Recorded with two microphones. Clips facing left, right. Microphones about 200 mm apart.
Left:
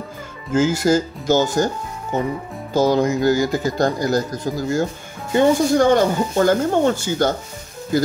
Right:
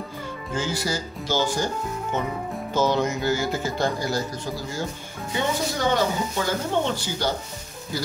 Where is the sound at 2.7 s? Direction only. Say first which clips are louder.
Left 6 dB; 35° left (ahead or behind).